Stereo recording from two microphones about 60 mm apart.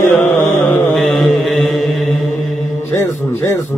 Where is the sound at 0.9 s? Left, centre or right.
Centre.